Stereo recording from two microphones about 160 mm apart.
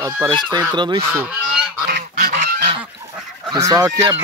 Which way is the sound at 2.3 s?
55° right (ahead or behind).